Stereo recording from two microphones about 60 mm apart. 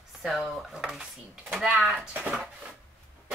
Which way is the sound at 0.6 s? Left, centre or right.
Centre.